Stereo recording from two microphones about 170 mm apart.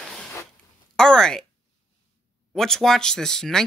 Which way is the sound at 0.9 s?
5° left (ahead or behind).